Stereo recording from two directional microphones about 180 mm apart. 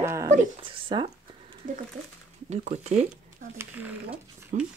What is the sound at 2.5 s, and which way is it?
Speech, 40° right (ahead or behind).